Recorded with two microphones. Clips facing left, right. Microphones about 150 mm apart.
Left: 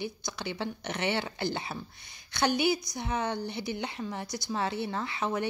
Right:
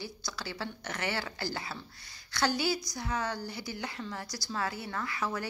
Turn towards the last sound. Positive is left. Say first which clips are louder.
# left 3 dB
turn(degrees=20)  # may be behind; listen again after turning